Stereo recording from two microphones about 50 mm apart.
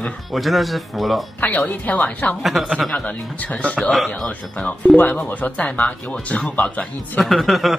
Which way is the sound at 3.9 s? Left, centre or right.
Centre.